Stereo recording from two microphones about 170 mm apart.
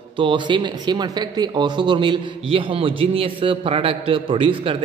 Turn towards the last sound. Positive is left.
turn(degrees=-30)  # may be behind; listen again after turning